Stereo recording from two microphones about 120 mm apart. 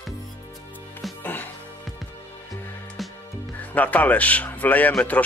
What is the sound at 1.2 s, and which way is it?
Music, 15° left (ahead or behind).